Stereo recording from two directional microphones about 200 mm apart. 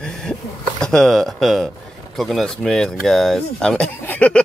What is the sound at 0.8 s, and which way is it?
Speech, 5° left (ahead or behind).